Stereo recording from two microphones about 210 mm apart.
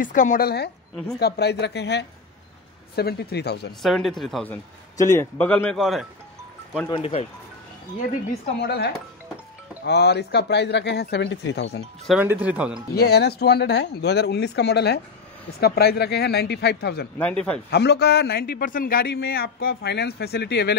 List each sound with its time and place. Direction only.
0.0 s a woman's voice: 40° left (ahead or behind)
3.8 s speech: centre (ahead or behind)
4.9 s a man's voice: 15° left (ahead or behind)
6.9 s speech: 30° left (ahead or behind)
8.6 s a man's voice: 50° left (ahead or behind)
12.1 s speech: 5° right (ahead or behind)
12.9 s a man's voice: 50° left (ahead or behind)
17.2 s speech: 5° left (ahead or behind)
17.6 s a man's voice: 50° left (ahead or behind)